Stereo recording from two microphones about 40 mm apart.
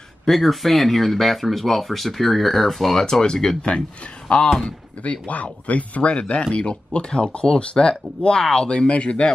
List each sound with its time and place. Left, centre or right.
0.2 s speech: centre
4.3 s speech: left
6.1 s speech: left
8.6 s speech: left